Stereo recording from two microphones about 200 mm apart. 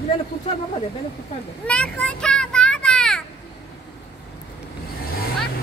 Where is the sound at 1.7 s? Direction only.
5° left (ahead or behind).